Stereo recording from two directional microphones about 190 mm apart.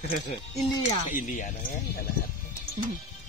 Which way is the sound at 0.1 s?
45° left (ahead or behind).